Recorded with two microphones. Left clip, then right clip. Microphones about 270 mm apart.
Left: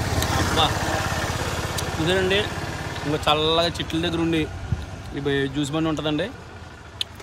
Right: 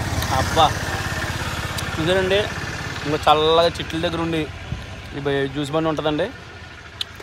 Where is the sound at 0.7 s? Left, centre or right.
Left.